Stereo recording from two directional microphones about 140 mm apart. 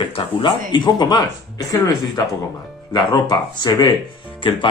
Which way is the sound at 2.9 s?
30° left (ahead or behind).